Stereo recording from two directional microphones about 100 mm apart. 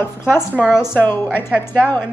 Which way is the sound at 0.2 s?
25° left (ahead or behind).